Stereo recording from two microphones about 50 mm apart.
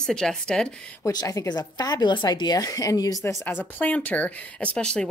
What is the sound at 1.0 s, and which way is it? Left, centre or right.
Speech, left.